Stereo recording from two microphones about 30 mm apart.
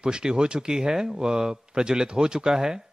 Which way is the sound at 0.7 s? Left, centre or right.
Centre.